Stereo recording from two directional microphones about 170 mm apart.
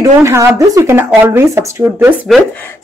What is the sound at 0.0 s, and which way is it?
Speech, 15° right (ahead or behind).